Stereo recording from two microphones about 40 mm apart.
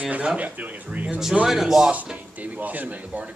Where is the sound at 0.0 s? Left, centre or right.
Right.